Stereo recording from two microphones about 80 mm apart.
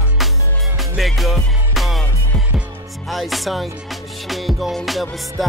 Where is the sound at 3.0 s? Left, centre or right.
Centre.